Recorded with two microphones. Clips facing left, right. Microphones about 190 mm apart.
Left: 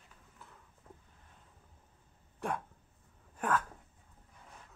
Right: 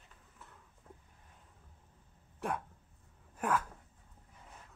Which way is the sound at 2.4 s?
5° right (ahead or behind).